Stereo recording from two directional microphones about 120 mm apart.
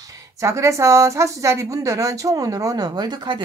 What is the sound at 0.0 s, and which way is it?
Speech, 30° right (ahead or behind).